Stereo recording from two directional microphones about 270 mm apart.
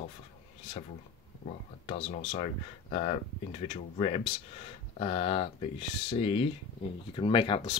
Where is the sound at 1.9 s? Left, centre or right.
Centre.